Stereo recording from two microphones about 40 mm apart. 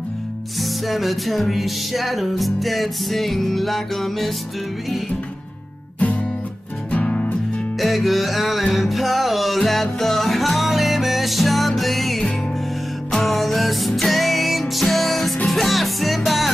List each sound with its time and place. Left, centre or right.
0.6 s music: centre
6.9 s music: left
7.8 s music: centre